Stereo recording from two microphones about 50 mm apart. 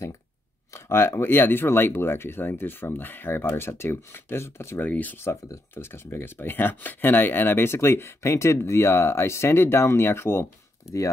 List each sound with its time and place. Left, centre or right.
0.7 s speech: left
4.8 s speech: left
5.1 s speech: left